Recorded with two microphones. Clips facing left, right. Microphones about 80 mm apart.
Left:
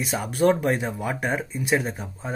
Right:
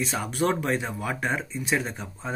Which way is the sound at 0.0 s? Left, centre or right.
Centre.